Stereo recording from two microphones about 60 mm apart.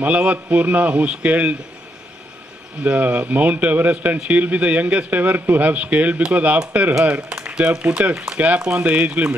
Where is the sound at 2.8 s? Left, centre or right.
Right.